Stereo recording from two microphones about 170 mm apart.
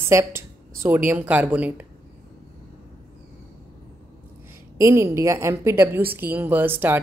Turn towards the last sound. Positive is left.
turn(degrees=-10)  # may be behind; listen again after turning